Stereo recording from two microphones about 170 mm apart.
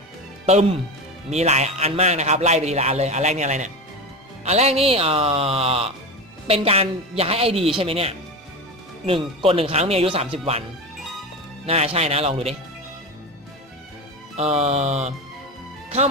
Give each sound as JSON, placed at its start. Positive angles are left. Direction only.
{"t": 0.5, "sound": "a man's voice", "side_deg": -40}
{"t": 11.6, "sound": "a man's voice", "side_deg": -35}
{"t": 14.3, "sound": "a man's voice", "side_deg": -40}